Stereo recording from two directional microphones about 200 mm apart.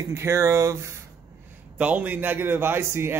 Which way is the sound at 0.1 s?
15° right (ahead or behind).